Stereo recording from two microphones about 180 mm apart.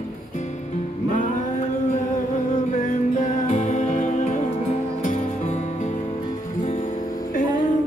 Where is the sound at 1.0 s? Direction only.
45° left (ahead or behind).